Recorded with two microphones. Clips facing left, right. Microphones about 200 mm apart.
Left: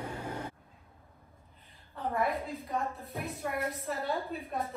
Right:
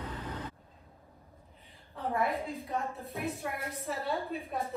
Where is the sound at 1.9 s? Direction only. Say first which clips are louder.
Even; centre (ahead or behind).